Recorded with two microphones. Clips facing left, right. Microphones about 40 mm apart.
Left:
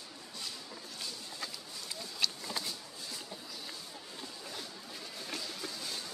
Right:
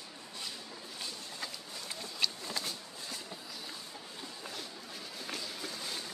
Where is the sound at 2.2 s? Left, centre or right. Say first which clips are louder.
Even; centre.